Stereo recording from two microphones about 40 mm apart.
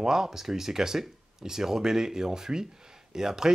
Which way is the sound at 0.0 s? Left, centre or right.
Centre.